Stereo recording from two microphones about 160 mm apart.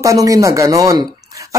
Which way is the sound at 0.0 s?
20° right (ahead or behind).